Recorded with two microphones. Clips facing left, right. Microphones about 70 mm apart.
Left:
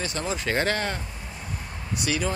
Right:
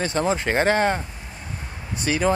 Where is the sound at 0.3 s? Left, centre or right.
Right.